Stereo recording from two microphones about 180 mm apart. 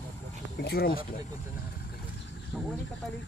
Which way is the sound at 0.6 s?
60° left (ahead or behind).